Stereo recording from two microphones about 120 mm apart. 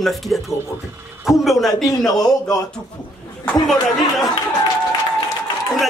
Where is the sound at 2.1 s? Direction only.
30° left (ahead or behind).